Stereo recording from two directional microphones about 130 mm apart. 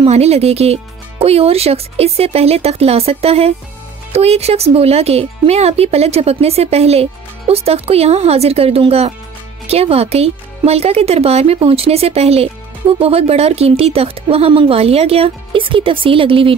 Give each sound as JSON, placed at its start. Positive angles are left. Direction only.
{"t": 0.0, "sound": "speech", "side_deg": -55}